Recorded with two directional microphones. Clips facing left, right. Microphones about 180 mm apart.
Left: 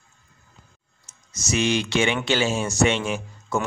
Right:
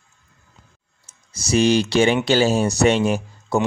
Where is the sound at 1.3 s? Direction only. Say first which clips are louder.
Right 6 dB; 35° right (ahead or behind).